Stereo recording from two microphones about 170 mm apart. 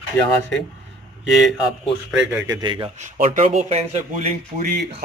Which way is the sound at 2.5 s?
25° right (ahead or behind).